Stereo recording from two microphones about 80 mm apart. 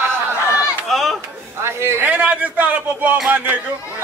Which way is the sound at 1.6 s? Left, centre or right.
Right.